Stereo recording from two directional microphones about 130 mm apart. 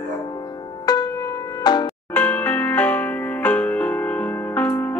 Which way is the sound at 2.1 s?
15° left (ahead or behind).